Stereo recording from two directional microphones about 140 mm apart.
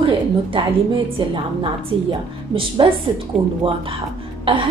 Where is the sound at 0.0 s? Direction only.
40° right (ahead or behind).